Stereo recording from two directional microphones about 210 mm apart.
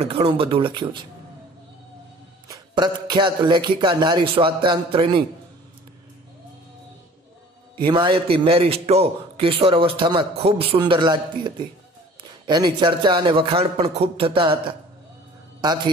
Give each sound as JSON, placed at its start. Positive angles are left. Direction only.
{"t": 0.0, "sound": "a man's voice", "side_deg": -30}
{"t": 2.4, "sound": "a man's voice", "side_deg": -20}
{"t": 7.8, "sound": "a man's voice", "side_deg": -20}